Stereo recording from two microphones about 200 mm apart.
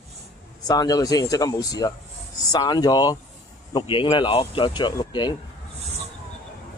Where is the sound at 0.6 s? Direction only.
20° left (ahead or behind).